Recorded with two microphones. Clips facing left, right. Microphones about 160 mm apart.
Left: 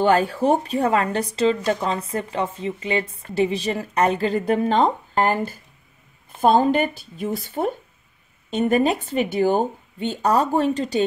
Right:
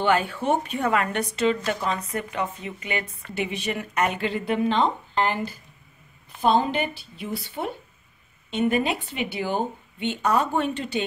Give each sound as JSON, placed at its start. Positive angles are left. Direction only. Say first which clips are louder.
{"t": 0.0, "sound": "speech", "louder": "left 5 dB", "side_deg": 35}